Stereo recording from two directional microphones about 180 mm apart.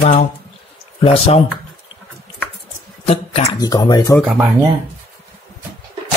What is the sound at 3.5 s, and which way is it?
Speech, 20° left (ahead or behind).